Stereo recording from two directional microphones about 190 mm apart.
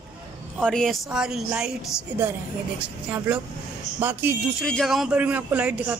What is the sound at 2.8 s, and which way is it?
A man's voice, 5° right (ahead or behind).